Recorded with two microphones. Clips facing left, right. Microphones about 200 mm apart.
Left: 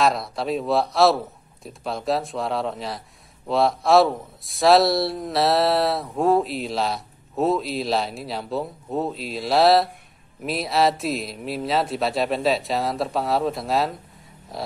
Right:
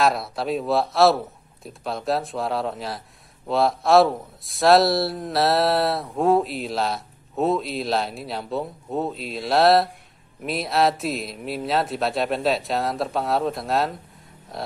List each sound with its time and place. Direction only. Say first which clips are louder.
0.0 s a man's voice: even; centre (ahead or behind)